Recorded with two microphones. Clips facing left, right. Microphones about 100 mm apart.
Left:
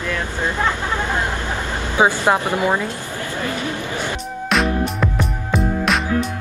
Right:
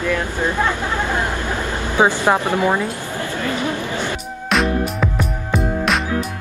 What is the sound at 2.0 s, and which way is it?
Speech, 20° left (ahead or behind).